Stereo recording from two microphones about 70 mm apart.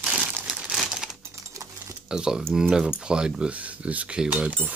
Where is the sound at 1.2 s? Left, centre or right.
Right.